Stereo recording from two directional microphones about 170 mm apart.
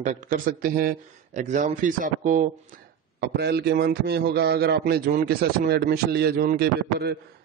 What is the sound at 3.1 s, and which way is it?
A man's voice, 70° right (ahead or behind).